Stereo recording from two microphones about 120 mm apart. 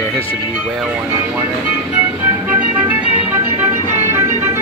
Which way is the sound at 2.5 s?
15° right (ahead or behind).